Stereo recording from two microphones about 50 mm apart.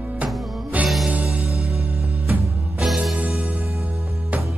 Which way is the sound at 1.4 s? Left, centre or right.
Centre.